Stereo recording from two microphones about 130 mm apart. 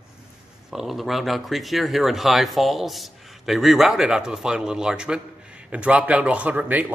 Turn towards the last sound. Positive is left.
turn(degrees=-10)  # may be behind; listen again after turning